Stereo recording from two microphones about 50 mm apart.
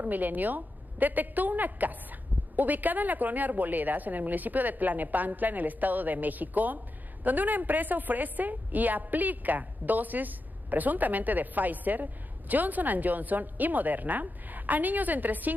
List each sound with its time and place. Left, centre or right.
0.0 s a woman's voice: right